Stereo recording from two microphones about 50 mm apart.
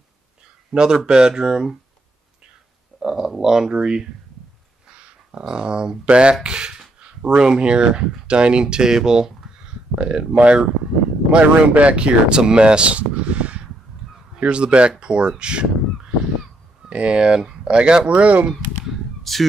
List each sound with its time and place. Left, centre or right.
0.7 s speech: centre
3.0 s speech: centre
4.9 s speech: right
19.3 s speech: centre